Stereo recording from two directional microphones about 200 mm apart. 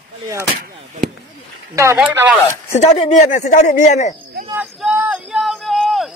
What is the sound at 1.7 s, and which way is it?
Speech, 15° right (ahead or behind).